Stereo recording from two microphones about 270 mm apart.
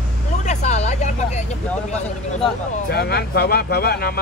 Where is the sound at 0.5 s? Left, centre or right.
Left.